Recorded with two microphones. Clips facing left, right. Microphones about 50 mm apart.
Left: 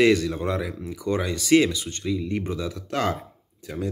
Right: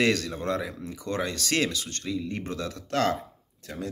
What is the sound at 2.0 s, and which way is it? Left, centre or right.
Speech, centre.